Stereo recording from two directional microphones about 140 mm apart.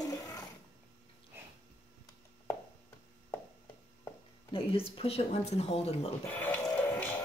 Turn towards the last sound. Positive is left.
turn(degrees=10)  # may be behind; listen again after turning